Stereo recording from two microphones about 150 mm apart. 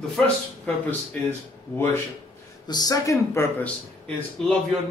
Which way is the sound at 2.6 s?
25° left (ahead or behind).